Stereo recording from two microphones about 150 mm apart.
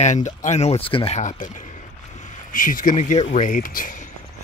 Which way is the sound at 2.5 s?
65° left (ahead or behind).